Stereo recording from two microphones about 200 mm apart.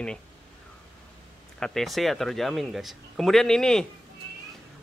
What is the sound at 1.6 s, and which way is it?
A man's voice, centre (ahead or behind).